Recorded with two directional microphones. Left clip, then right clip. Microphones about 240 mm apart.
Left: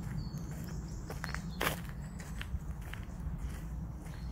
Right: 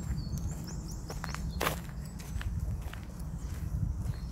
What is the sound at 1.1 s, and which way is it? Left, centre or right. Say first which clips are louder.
Walk: right 1 dB; centre.